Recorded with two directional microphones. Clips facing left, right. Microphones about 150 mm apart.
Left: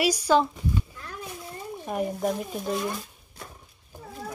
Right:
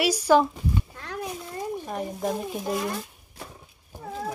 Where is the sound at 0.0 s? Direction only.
5° right (ahead or behind).